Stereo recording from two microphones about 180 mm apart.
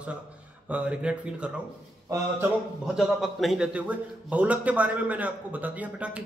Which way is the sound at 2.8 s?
5° right (ahead or behind).